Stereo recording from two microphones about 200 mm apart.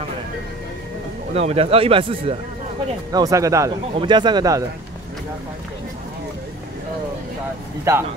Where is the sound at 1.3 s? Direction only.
30° right (ahead or behind).